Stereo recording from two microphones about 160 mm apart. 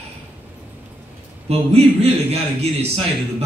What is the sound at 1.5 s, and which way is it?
A man's voice, 40° right (ahead or behind).